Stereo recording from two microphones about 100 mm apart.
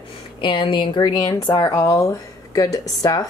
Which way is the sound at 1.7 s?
30° left (ahead or behind).